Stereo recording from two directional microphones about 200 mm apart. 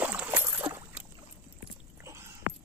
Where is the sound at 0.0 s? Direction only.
10° right (ahead or behind).